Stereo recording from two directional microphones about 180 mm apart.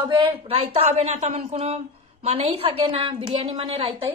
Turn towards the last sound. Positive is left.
turn(degrees=-30)  # may be behind; listen again after turning